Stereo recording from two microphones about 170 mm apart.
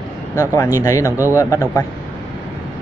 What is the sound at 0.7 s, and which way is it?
Speech, 20° left (ahead or behind).